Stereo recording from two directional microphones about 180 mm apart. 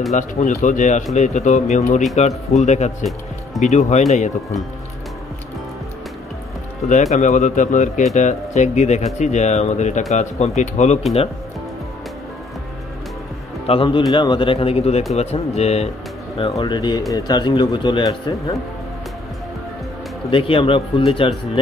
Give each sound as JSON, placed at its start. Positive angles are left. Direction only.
{"t": 0.1, "sound": "speech", "side_deg": 40}
{"t": 6.9, "sound": "speech", "side_deg": 40}
{"t": 13.7, "sound": "speech", "side_deg": 30}
{"t": 16.5, "sound": "speech", "side_deg": 25}
{"t": 20.2, "sound": "speech", "side_deg": 30}